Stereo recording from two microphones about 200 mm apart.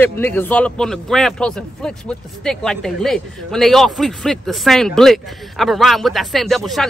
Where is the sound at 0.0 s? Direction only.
10° left (ahead or behind).